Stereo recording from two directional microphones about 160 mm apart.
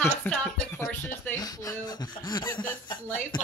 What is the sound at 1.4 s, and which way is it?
Speech, 20° left (ahead or behind).